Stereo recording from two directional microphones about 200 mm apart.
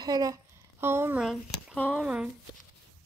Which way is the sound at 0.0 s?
15° right (ahead or behind).